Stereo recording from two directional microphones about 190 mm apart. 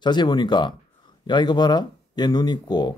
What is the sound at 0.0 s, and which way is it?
Speech, 25° left (ahead or behind).